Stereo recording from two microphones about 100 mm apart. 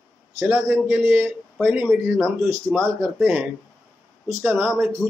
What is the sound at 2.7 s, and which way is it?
Speech, centre (ahead or behind).